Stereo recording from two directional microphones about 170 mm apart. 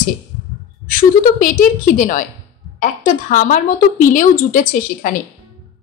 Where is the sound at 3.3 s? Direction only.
50° left (ahead or behind).